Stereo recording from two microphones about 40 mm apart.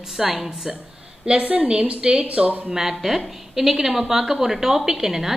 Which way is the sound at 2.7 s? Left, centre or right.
Centre.